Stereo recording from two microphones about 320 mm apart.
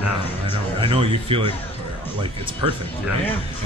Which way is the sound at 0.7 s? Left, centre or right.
Centre.